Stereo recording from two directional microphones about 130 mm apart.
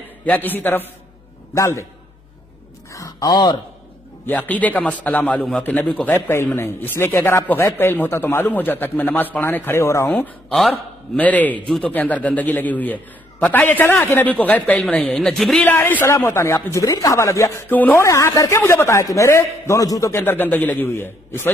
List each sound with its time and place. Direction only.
0.2 s a man's voice: 15° left (ahead or behind)
2.9 s a sound: 25° left (ahead or behind)
4.3 s speech: 10° left (ahead or behind)
10.5 s speech: 5° left (ahead or behind)
15.6 s a man's voice: 15° left (ahead or behind)
18.0 s a man's voice: 25° left (ahead or behind)